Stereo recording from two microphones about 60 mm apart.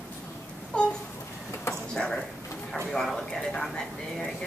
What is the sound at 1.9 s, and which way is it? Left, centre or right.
Speech, centre.